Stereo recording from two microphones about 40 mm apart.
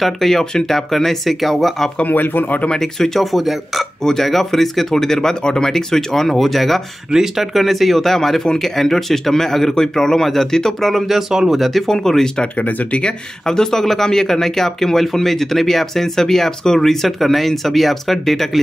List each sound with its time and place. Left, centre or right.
0.0 s speech: centre
2.0 s speech: left
2.7 s speech: centre
7.1 s speech: centre
11.1 s speech: centre
11.6 s speech: centre
12.5 s speech: left
13.0 s speech: centre